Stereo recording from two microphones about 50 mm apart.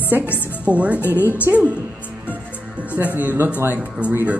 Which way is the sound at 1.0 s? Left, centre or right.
Left.